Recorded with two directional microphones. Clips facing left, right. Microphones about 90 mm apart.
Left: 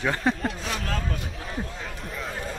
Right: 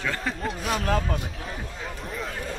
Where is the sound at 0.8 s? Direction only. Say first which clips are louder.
Right 5 dB; 35° right (ahead or behind).